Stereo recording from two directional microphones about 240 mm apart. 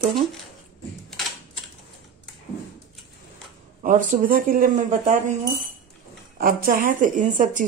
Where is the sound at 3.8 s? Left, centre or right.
Right.